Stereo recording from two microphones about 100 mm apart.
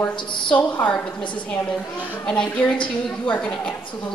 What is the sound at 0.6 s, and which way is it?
Speech, 15° left (ahead or behind).